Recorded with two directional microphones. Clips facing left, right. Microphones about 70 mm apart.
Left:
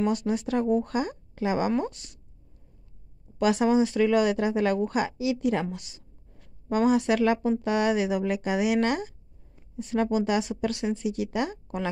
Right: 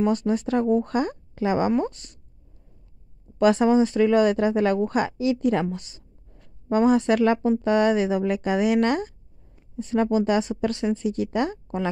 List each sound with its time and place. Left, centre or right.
0.0 s speech: right
3.3 s speech: right